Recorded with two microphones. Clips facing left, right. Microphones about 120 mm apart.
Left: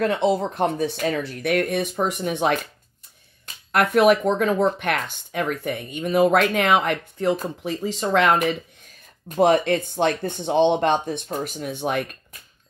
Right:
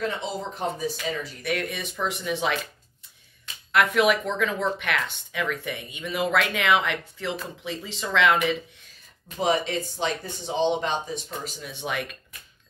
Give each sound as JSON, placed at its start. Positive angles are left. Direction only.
{"t": 0.0, "sound": "speech", "side_deg": 60}
{"t": 3.7, "sound": "speech", "side_deg": 45}